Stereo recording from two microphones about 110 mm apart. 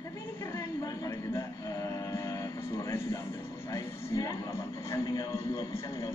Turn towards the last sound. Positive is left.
turn(degrees=35)  # may be behind; listen again after turning